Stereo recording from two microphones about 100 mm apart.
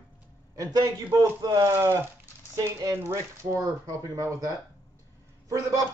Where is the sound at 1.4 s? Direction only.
35° right (ahead or behind).